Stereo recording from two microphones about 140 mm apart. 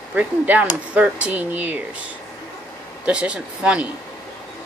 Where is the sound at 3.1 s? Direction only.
10° right (ahead or behind).